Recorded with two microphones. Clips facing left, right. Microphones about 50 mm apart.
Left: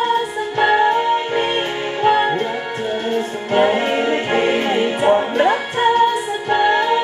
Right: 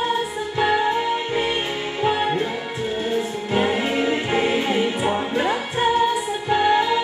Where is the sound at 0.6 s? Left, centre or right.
Left.